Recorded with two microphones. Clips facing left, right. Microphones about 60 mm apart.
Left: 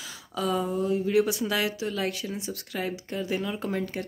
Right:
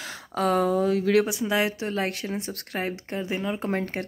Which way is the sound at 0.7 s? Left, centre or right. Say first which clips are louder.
Right 4 dB; right.